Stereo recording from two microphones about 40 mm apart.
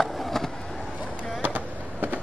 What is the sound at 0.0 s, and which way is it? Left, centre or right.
Skateboard, centre.